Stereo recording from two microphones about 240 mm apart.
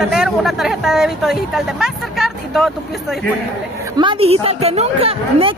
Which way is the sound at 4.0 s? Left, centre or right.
Right.